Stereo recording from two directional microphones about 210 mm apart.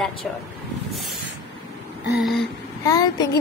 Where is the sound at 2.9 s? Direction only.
15° left (ahead or behind).